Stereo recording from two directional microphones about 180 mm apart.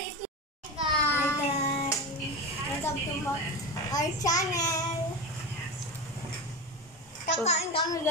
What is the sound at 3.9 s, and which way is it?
Speech, 20° left (ahead or behind).